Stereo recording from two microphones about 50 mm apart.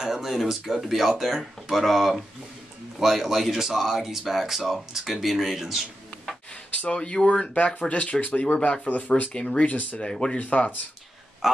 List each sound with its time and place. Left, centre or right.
0.0 s speech: centre
6.5 s speech: left
8.5 s speech: centre
8.8 s speech: left
9.2 s speech: centre
9.7 s speech: left
9.9 s speech: centre
10.4 s speech: left
11.4 s speech: centre